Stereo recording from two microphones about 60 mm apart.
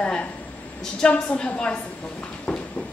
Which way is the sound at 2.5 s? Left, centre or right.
Centre.